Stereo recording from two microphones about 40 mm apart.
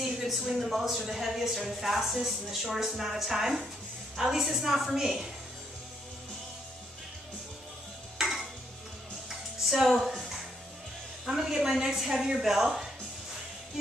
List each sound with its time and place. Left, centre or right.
0.0 s a woman's voice: centre
8.2 s music: centre
9.7 s music: centre
11.2 s a woman's voice: centre